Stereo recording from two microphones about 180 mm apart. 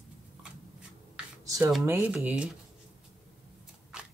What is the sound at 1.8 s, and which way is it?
Speech, 10° right (ahead or behind).